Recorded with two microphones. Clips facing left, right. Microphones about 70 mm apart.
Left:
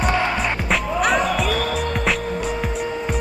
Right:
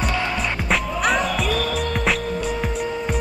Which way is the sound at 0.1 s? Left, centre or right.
Left.